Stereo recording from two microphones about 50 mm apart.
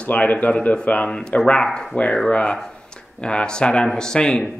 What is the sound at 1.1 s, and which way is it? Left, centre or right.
Speech, centre.